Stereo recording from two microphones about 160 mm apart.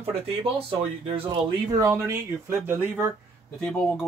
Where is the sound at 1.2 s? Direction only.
20° right (ahead or behind).